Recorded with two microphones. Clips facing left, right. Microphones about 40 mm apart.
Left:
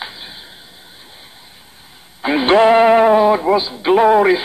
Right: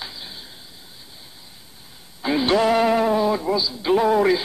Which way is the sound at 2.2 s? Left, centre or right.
Left.